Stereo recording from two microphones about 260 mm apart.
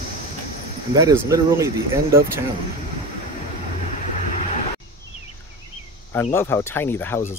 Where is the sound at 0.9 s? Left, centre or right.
Centre.